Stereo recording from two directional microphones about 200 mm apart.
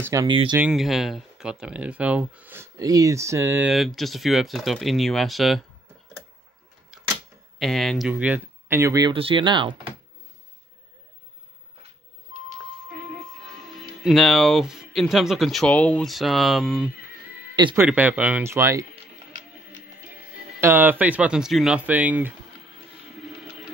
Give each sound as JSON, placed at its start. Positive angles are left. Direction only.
{"t": 0.0, "sound": "speech", "side_deg": -15}
{"t": 0.6, "sound": "speech", "side_deg": 0}
{"t": 3.7, "sound": "speech", "side_deg": 0}
{"t": 7.5, "sound": "speech", "side_deg": 0}
{"t": 13.5, "sound": "speech", "side_deg": 0}
{"t": 20.6, "sound": "speech", "side_deg": -10}